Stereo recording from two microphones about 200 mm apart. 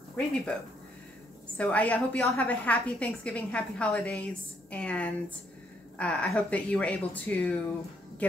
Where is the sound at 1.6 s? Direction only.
5° left (ahead or behind).